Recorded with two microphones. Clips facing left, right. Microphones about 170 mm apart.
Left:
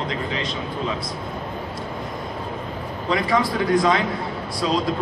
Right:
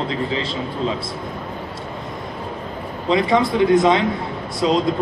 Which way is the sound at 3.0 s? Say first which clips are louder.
Right 4 dB; 25° right (ahead or behind).